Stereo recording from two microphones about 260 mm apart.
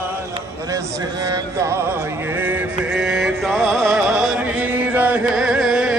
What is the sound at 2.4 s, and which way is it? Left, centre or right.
Music, centre.